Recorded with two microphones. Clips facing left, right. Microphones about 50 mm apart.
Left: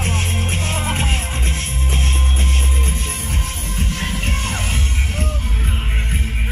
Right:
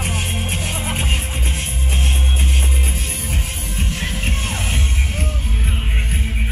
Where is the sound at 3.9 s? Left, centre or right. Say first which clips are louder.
Left 1 dB; centre.